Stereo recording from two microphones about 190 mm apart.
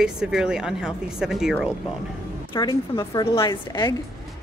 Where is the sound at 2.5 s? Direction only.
25° left (ahead or behind).